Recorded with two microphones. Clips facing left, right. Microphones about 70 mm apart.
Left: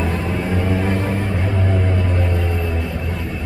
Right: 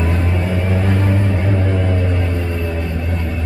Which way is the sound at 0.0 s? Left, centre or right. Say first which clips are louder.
Right 1 dB; right.